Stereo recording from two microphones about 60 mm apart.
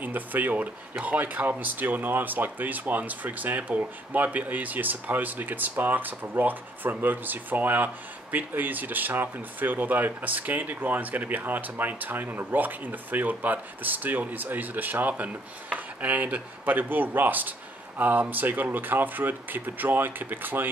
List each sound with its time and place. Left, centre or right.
0.0 s speech: right